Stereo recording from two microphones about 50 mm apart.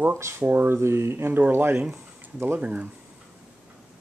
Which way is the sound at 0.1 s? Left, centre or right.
Right.